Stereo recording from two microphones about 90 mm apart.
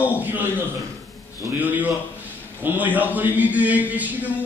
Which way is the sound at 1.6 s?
20° right (ahead or behind).